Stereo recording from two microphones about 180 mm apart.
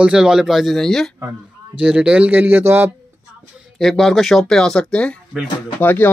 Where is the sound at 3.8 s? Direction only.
Centre (ahead or behind).